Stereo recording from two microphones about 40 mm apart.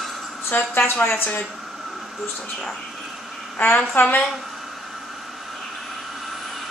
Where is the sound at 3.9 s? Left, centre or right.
Left.